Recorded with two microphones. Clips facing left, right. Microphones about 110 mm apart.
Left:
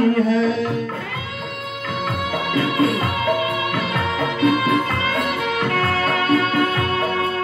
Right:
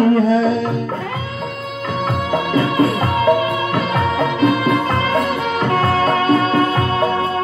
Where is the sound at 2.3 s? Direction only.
30° right (ahead or behind).